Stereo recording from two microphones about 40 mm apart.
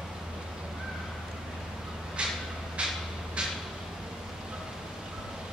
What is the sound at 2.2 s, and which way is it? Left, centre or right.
Vehicle, right.